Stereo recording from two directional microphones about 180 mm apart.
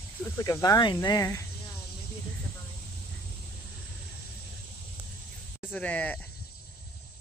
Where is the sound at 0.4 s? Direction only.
20° left (ahead or behind).